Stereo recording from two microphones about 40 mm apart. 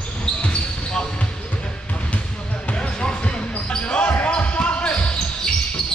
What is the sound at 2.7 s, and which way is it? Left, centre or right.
Basketball bounce, left.